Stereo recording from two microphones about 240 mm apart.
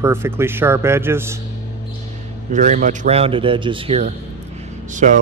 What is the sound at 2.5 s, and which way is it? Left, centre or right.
Speech, right.